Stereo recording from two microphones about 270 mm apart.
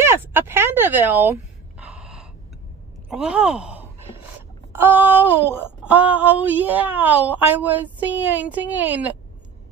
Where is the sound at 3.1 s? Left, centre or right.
Centre.